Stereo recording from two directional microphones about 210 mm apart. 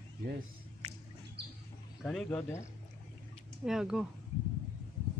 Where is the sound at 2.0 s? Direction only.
Centre (ahead or behind).